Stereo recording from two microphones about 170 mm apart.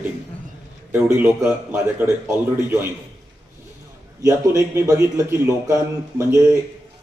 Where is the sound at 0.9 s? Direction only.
10° right (ahead or behind).